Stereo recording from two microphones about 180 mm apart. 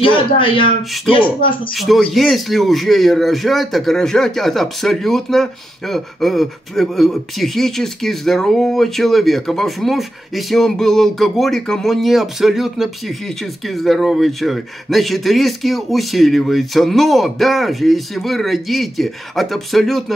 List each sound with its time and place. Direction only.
0.0 s speech: 30° left (ahead or behind)
1.7 s a man's voice: centre (ahead or behind)